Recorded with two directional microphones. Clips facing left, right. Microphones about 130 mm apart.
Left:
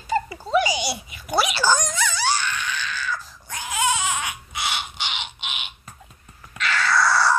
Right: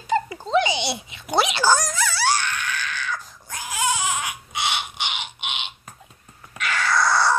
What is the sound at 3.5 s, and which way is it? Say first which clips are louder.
Baby cry: left 1 dB; centre (ahead or behind).